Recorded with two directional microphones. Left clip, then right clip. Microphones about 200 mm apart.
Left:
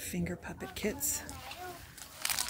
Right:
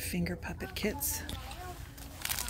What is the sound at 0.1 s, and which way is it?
Speech, 5° right (ahead or behind).